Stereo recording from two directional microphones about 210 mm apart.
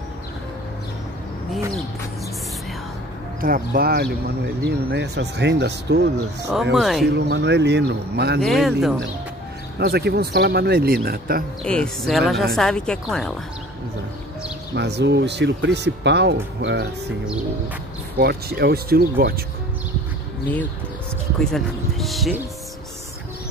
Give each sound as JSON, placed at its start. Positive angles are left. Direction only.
{"t": 3.3, "sound": "speech", "side_deg": -45}
{"t": 6.5, "sound": "speech", "side_deg": 0}
{"t": 7.1, "sound": "speech", "side_deg": -55}
{"t": 8.4, "sound": "speech", "side_deg": 0}
{"t": 9.8, "sound": "speech", "side_deg": -50}
{"t": 11.6, "sound": "speech", "side_deg": 5}
{"t": 14.8, "sound": "speech", "side_deg": -55}
{"t": 18.1, "sound": "speech", "side_deg": -50}
{"t": 21.5, "sound": "speech", "side_deg": 0}